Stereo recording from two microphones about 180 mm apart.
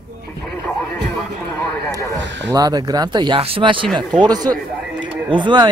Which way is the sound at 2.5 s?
20° right (ahead or behind).